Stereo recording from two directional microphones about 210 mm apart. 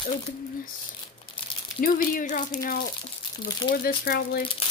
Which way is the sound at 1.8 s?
40° left (ahead or behind).